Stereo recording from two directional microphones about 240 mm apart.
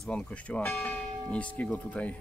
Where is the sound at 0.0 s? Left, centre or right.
Centre.